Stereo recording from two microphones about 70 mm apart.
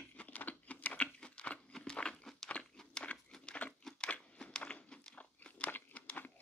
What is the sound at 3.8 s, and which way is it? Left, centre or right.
Biting, centre.